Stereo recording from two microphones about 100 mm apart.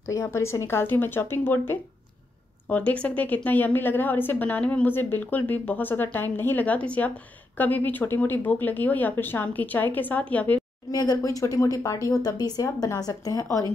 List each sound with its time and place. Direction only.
0.0 s a woman's voice: 30° left (ahead or behind)
10.9 s speech: 40° left (ahead or behind)